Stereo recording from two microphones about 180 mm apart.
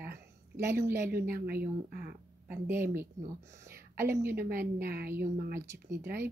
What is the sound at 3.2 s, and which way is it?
Speech, 55° right (ahead or behind).